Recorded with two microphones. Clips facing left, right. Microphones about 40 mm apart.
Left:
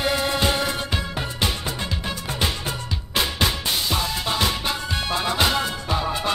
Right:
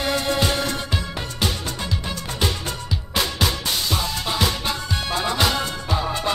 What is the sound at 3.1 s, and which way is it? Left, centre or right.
Music, centre.